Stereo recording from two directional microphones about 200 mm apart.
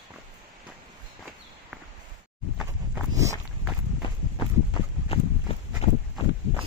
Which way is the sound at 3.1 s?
15° right (ahead or behind).